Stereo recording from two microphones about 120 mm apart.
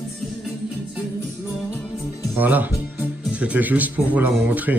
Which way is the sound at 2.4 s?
15° right (ahead or behind).